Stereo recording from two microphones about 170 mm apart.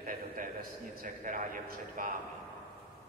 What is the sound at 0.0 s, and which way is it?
A man's voice, 50° right (ahead or behind).